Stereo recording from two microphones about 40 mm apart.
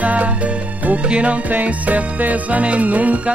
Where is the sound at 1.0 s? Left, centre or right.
Right.